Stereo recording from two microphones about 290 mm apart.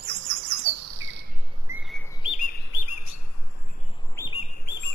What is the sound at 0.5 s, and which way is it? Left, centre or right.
Bird, right.